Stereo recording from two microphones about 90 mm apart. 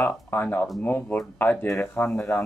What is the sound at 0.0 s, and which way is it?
Speech, 20° left (ahead or behind).